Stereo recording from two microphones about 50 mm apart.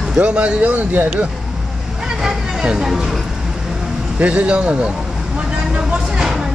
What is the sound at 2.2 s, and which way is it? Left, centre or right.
Vehicle, centre.